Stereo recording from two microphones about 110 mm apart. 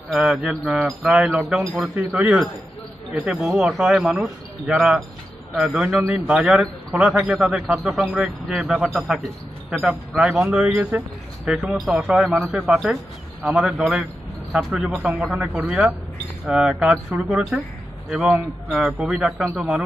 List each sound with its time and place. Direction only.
0.3 s a man's voice: centre (ahead or behind)